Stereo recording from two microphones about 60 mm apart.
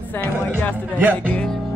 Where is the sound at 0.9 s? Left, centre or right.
Right.